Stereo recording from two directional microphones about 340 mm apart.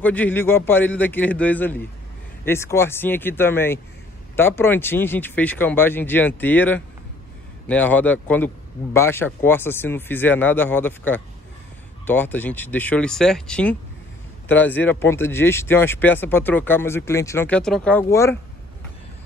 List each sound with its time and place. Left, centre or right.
0.0 s speech: centre